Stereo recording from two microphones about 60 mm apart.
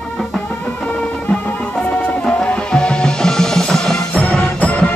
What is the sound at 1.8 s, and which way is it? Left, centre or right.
Music, left.